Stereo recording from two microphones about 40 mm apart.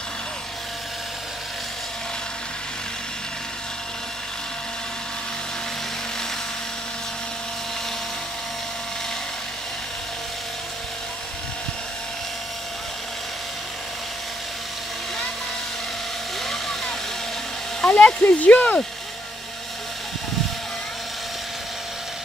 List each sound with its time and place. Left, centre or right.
16.4 s vehicle: centre
17.8 s a sound: left
18.2 s speech: left